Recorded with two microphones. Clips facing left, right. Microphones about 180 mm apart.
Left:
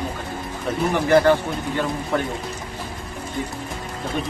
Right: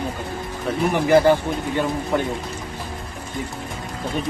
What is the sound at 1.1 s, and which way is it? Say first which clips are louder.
Speech: right 1 dB; 15° right (ahead or behind).